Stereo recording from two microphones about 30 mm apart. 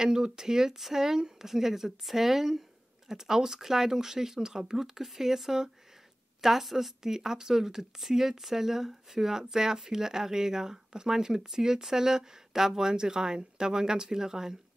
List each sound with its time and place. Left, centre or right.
0.0 s speech: centre
4.7 s speech: centre